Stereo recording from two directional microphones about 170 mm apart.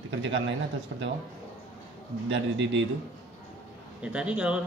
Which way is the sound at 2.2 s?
90° right.